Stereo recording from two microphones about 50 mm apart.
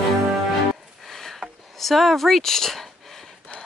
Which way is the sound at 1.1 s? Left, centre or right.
Centre.